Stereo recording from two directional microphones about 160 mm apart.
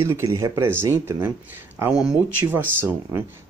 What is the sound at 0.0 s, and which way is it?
Speech, 20° right (ahead or behind).